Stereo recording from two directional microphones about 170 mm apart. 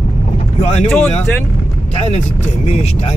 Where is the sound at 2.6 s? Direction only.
40° left (ahead or behind).